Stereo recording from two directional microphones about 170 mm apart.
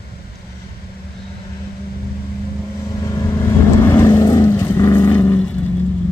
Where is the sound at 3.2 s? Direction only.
15° left (ahead or behind).